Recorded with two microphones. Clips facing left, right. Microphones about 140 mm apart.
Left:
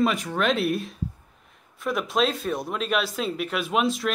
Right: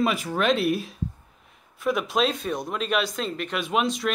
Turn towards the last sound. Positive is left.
turn(degrees=0)  # may be behind; listen again after turning